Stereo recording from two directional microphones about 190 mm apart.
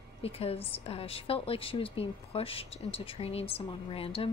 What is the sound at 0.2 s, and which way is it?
Speech, 30° left (ahead or behind).